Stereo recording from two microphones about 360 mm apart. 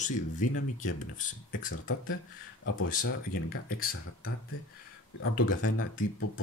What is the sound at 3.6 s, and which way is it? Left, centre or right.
Speech, left.